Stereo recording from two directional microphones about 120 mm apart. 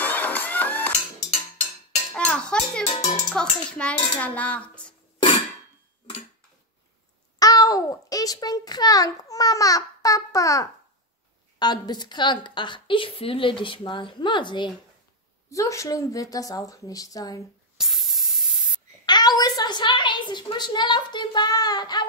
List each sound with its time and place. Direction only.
0.0 s music: 15° left (ahead or behind)
2.1 s a child's voice: 10° left (ahead or behind)
2.9 s speech: 75° left (ahead or behind)
3.3 s dishes: 10° left (ahead or behind)
7.3 s a child's voice: 30° left (ahead or behind)
15.5 s a woman's voice: 25° left (ahead or behind)
17.7 s spray: centre (ahead or behind)
19.0 s a woman's voice: 35° left (ahead or behind)